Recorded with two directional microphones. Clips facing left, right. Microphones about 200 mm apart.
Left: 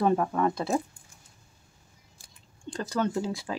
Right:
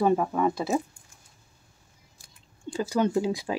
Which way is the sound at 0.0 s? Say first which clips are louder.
Right 1 dB; 5° right (ahead or behind).